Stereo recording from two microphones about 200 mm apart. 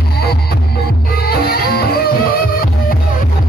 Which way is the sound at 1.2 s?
50° left (ahead or behind).